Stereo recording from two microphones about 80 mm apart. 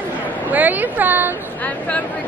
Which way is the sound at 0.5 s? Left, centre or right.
Right.